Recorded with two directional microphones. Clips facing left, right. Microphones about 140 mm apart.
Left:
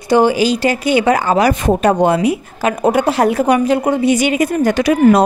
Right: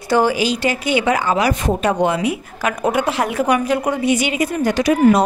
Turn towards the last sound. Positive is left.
turn(degrees=60)  # may be behind; listen again after turning